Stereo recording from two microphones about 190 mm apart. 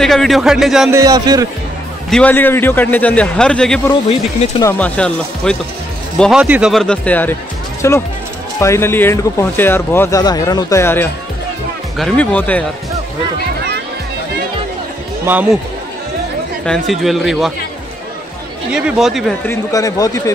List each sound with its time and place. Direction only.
0.0 s speech: centre (ahead or behind)
0.9 s speech: 20° right (ahead or behind)
2.0 s speech: 5° left (ahead or behind)
4.1 s speech: 30° left (ahead or behind)
4.6 s speech: 5° left (ahead or behind)
16.6 s speech: centre (ahead or behind)
18.7 s speech: 5° right (ahead or behind)
19.4 s speech: 15° left (ahead or behind)